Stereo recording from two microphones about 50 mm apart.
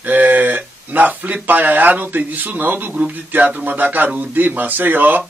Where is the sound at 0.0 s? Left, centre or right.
Right.